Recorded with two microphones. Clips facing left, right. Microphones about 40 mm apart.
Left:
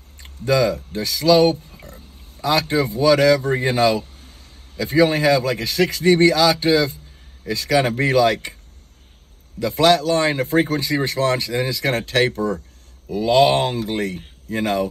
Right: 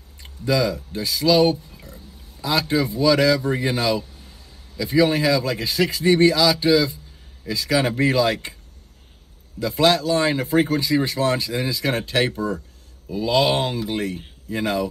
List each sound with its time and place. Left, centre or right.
0.2 s a sound: left
0.7 s speech: left
9.6 s speech: left